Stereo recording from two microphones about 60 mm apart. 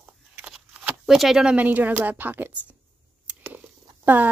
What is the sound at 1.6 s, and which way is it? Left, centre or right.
A woman's voice, right.